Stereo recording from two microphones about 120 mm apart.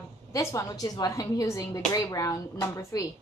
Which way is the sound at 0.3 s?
25° left (ahead or behind).